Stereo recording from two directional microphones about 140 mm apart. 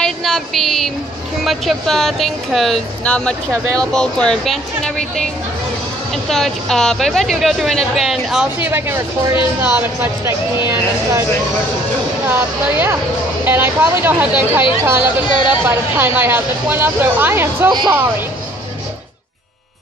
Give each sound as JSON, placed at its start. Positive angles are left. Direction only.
{"t": 0.0, "sound": "a sound", "side_deg": 0}
{"t": 1.4, "sound": "a woman's voice", "side_deg": 0}
{"t": 12.3, "sound": "speech", "side_deg": -15}
{"t": 15.2, "sound": "speech", "side_deg": 35}
{"t": 15.6, "sound": "speech", "side_deg": -15}
{"t": 17.6, "sound": "speech", "side_deg": -30}